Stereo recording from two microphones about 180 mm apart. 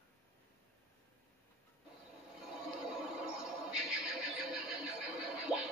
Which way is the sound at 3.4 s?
5° right (ahead or behind).